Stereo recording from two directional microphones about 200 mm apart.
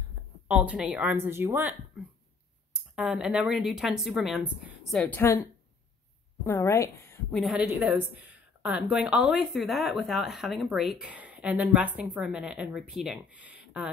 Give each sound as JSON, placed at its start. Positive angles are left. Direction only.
{"t": 0.5, "sound": "a woman's voice", "side_deg": -5}